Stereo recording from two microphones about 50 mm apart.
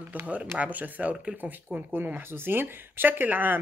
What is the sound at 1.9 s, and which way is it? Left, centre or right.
Speech, right.